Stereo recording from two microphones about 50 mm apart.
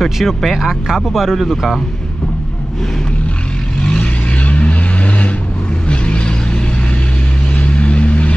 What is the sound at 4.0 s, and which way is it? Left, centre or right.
Vehicle, left.